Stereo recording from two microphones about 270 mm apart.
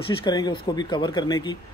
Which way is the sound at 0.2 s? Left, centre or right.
Centre.